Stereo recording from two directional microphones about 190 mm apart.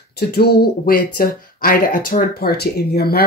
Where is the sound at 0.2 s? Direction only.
55° left (ahead or behind).